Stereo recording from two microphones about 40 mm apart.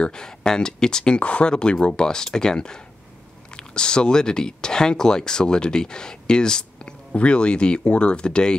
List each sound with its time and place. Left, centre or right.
0.0 s speech: centre
1.2 s speech: left
1.5 s speech: left
7.1 s speech: left